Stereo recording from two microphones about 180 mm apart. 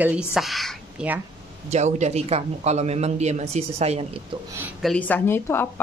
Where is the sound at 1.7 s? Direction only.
40° right (ahead or behind).